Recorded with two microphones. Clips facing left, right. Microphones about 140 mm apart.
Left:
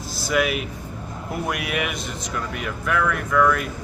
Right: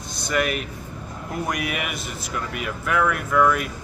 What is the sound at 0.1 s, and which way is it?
Speech, 5° left (ahead or behind).